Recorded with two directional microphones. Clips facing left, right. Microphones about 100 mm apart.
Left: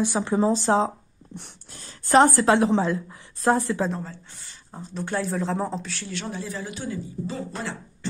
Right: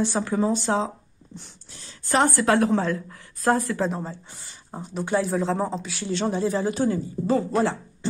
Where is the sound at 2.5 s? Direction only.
20° left (ahead or behind).